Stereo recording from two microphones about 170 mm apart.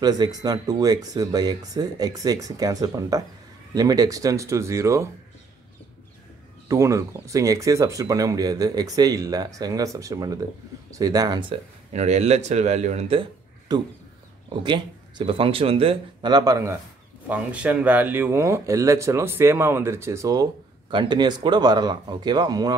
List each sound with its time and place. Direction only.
0.0 s speech: 25° right (ahead or behind)
6.7 s speech: 15° right (ahead or behind)
17.3 s speech: 10° right (ahead or behind)